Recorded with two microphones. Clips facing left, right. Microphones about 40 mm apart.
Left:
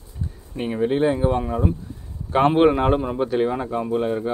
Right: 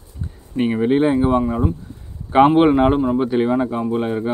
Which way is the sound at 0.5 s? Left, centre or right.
Right.